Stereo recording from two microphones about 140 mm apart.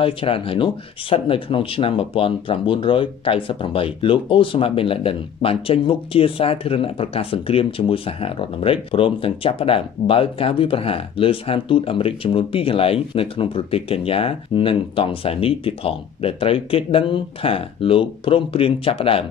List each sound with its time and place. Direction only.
0.0 s speech: 40° left (ahead or behind)